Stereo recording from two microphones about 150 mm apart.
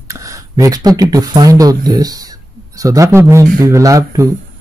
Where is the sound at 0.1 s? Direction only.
20° right (ahead or behind).